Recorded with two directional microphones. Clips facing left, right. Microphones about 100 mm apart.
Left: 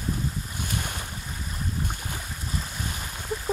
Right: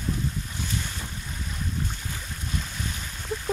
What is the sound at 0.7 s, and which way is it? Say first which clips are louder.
Boat: left 2 dB; 55° left (ahead or behind).